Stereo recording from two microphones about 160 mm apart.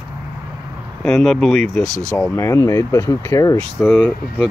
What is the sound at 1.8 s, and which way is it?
Speech, 50° left (ahead or behind).